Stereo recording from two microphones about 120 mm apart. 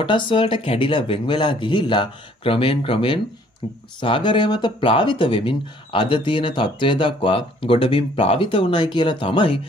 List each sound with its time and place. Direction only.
0.0 s speech: 45° left (ahead or behind)